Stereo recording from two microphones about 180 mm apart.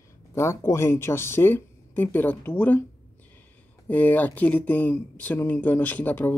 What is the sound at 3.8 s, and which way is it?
Speech, 10° left (ahead or behind).